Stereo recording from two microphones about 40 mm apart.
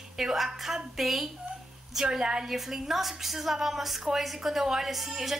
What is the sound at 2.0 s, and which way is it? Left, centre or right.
Speech, centre.